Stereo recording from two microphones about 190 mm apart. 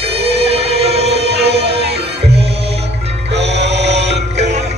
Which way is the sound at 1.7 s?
30° right (ahead or behind).